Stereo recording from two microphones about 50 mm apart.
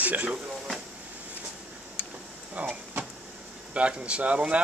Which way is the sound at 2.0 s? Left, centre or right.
Left.